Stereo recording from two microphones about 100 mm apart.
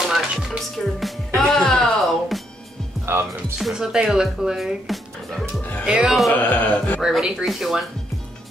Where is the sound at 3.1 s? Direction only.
25° right (ahead or behind).